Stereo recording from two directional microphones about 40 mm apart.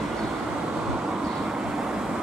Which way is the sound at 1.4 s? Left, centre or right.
Centre.